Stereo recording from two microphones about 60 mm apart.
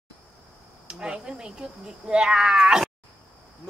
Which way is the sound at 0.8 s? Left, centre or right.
Centre.